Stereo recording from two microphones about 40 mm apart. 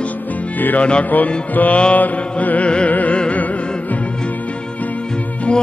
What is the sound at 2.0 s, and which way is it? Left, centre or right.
Mantra, left.